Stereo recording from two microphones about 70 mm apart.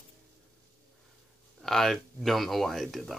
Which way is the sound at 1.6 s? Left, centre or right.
Centre.